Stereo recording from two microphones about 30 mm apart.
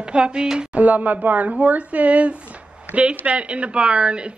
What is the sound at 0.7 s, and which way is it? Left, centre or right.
Speech, right.